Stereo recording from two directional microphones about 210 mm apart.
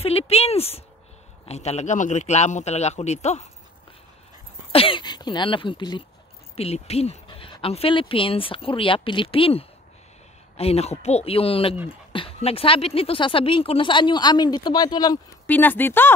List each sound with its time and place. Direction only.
0.0 s a man's voice: 30° left (ahead or behind)
4.7 s speech: 25° left (ahead or behind)